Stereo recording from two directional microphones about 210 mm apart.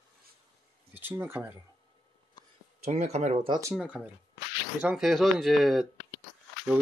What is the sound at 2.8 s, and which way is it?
Speech, 30° right (ahead or behind).